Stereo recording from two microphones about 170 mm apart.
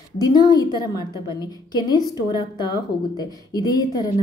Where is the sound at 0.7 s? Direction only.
20° right (ahead or behind).